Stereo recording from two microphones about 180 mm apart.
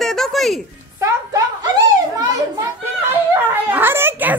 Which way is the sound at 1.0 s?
20° right (ahead or behind).